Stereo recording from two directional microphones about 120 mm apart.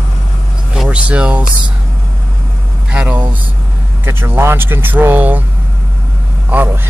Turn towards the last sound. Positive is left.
turn(degrees=-15)  # may be behind; listen again after turning